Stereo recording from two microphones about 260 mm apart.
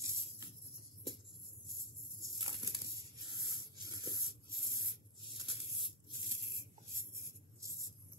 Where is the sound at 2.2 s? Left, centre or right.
Centre.